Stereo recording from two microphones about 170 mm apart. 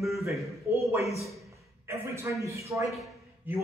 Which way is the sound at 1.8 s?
15° right (ahead or behind).